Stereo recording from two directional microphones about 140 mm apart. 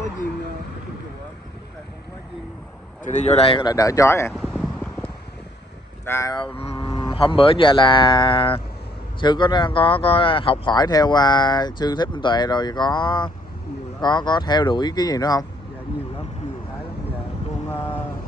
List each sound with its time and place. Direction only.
3.0 s speech: 55° left (ahead or behind); by 3.7 s 40° left (ahead or behind)
3.7 s speech: 25° left (ahead or behind)
4.3 s a sound: centre (ahead or behind)
6.0 s speech: 20° left (ahead or behind)
6.3 s speech: 40° left (ahead or behind)
17.6 s a sound: 15° left (ahead or behind)